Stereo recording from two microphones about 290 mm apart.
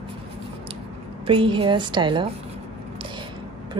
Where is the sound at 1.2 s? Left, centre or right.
Centre.